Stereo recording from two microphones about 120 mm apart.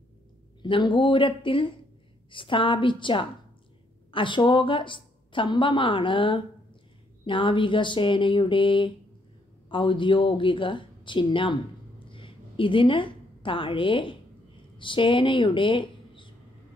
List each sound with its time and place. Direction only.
0.6 s a woman's voice: 40° left (ahead or behind)
12.1 s a sound: 45° left (ahead or behind)
14.8 s speech: 45° left (ahead or behind)